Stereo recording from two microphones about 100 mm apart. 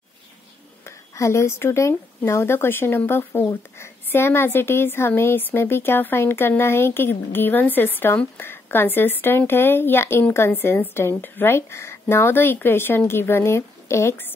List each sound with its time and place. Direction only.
0.8 s a woman's voice: 30° left (ahead or behind)